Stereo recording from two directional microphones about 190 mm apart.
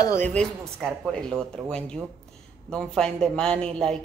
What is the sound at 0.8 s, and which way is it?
A woman's voice, 5° left (ahead or behind).